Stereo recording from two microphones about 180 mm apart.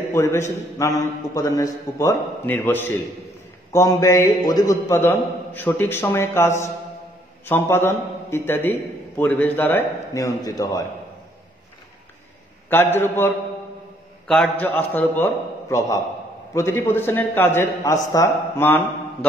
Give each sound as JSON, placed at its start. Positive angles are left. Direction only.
{"t": 0.1, "sound": "a man's voice", "side_deg": 15}
{"t": 12.6, "sound": "a man's voice", "side_deg": 10}
{"t": 14.2, "sound": "a man's voice", "side_deg": 0}
{"t": 16.5, "sound": "a man's voice", "side_deg": 15}